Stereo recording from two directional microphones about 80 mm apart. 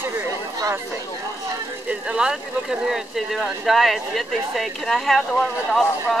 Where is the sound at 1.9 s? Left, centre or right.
Centre.